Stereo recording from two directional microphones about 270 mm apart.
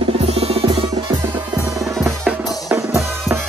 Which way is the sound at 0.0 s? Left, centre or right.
Right.